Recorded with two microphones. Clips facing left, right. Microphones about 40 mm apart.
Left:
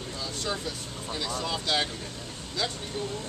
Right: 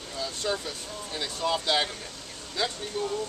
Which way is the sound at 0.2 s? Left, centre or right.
Centre.